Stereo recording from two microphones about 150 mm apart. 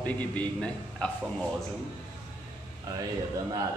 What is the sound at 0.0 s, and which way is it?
A man's voice, 10° left (ahead or behind).